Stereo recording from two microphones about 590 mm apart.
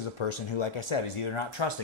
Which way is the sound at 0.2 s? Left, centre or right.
Left.